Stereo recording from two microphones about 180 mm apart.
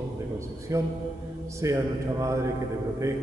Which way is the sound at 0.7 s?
15° right (ahead or behind).